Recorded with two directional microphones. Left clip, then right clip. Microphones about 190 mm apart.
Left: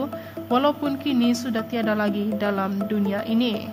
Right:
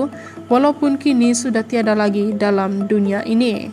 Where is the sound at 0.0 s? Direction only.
20° right (ahead or behind).